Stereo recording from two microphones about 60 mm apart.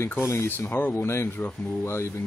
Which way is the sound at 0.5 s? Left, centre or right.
Left.